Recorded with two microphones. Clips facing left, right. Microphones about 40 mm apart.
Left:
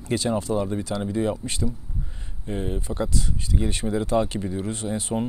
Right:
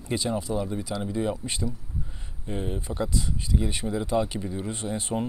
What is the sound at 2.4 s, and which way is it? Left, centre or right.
Speech, centre.